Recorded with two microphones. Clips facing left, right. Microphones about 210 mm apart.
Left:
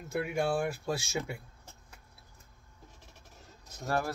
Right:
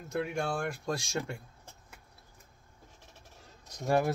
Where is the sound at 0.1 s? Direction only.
5° left (ahead or behind).